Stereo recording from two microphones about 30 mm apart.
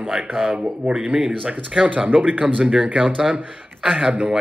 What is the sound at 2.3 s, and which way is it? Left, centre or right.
Speech, right.